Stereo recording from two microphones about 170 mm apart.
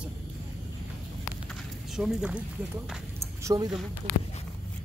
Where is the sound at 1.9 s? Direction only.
Centre (ahead or behind).